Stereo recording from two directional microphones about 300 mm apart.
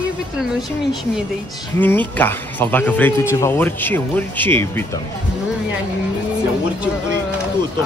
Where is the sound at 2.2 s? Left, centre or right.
Centre.